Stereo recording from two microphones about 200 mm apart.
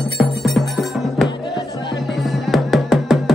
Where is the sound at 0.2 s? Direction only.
Centre (ahead or behind).